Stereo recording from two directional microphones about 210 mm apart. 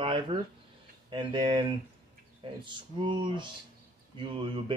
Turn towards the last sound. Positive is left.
turn(degrees=-25)  # may be behind; listen again after turning